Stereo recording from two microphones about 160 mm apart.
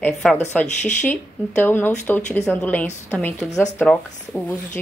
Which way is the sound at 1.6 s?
10° left (ahead or behind).